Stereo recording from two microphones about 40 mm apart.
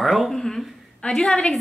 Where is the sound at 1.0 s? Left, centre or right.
Left.